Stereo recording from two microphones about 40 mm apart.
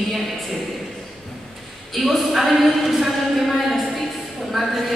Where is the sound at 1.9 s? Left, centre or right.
Centre.